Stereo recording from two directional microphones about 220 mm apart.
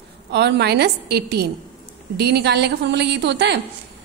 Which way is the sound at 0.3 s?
50° right (ahead or behind).